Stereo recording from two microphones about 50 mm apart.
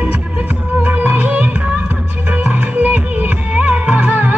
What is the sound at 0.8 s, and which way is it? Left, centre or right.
Music, right.